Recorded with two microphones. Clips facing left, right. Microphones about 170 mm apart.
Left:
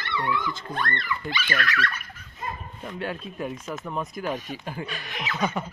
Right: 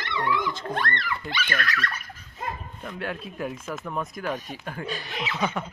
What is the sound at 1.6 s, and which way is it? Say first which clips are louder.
Speech: left 2 dB; 40° right (ahead or behind).